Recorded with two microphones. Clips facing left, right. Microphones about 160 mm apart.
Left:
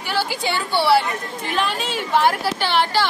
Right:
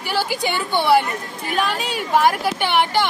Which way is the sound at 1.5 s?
45° right (ahead or behind).